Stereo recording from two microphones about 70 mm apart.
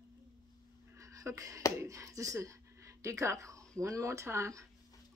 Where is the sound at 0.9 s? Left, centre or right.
Right.